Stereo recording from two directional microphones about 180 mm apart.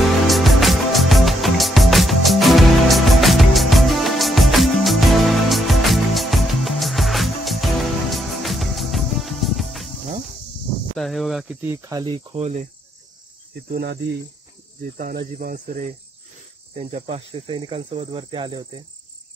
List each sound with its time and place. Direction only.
0.0 s music: centre (ahead or behind)
11.0 s speech: centre (ahead or behind)
11.7 s speech: 20° right (ahead or behind)
13.7 s cricket: 65° right (ahead or behind)
15.3 s speech: 50° right (ahead or behind)
16.7 s speech: 35° right (ahead or behind)